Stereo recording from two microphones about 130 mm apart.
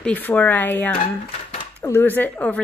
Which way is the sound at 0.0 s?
10° left (ahead or behind).